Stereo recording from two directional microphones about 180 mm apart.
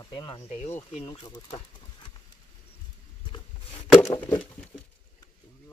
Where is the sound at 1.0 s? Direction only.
25° left (ahead or behind).